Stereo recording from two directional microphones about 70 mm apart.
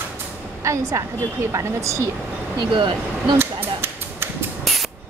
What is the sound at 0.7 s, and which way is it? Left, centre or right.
Speech, right.